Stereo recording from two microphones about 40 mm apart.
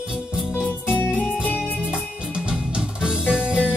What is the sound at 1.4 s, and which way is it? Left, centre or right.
Music, left.